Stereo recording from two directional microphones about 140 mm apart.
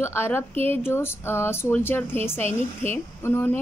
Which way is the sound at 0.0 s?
15° left (ahead or behind).